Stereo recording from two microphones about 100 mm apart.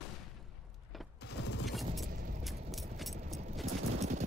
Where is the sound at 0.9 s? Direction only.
Centre (ahead or behind).